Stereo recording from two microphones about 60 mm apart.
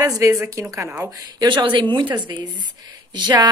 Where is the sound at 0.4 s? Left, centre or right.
Right.